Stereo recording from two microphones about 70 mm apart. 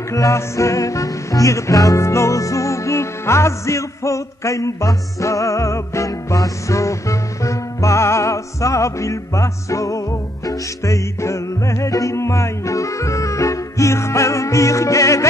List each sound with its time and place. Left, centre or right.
0.1 s music: left